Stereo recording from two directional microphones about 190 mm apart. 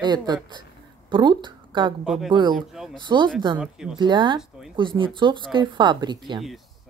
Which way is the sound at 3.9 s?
25° right (ahead or behind).